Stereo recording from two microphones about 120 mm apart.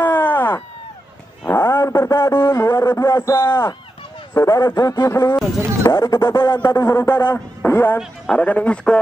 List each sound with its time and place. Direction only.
0.0 s a sound: 15° left (ahead or behind)
1.5 s a man's voice: 20° left (ahead or behind)
5.9 s music: 30° left (ahead or behind)
6.8 s speech: 20° left (ahead or behind)